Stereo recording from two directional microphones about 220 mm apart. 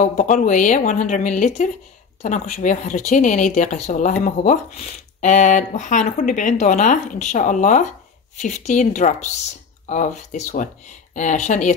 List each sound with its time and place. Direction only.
0.0 s speech: 35° left (ahead or behind)